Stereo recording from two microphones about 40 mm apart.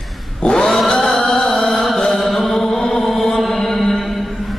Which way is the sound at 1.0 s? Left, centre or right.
Centre.